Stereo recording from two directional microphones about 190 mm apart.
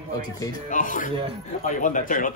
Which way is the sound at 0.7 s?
45° left (ahead or behind).